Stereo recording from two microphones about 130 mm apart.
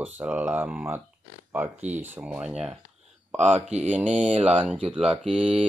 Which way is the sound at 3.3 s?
60° right (ahead or behind).